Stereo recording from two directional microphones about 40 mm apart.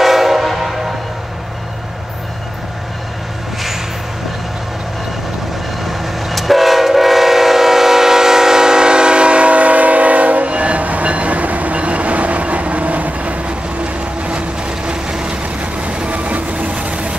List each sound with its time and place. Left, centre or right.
0.0 s train: centre
5.9 s train: centre; by 14.4 s right
14.9 s vehicle: centre
15.4 s vehicle: right